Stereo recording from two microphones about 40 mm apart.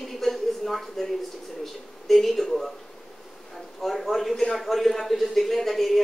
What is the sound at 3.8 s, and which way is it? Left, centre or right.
A man's voice, centre.